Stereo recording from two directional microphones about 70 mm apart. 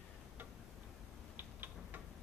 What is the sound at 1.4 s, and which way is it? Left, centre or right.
Tick-tock, right.